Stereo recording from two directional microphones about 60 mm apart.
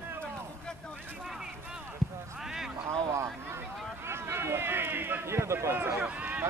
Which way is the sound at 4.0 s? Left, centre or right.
Right.